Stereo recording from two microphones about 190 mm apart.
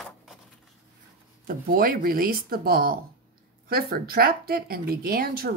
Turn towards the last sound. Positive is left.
turn(degrees=-50)  # may be behind; listen again after turning